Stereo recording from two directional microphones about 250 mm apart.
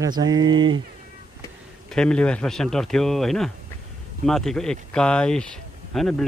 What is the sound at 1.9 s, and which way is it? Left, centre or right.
Speech, centre.